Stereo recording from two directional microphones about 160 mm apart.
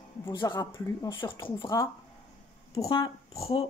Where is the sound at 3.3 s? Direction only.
40° left (ahead or behind).